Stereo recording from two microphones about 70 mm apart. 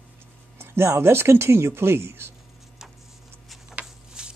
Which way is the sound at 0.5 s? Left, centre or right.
Right.